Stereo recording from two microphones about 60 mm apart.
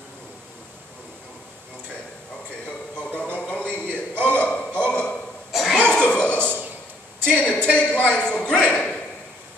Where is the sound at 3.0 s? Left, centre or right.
Left.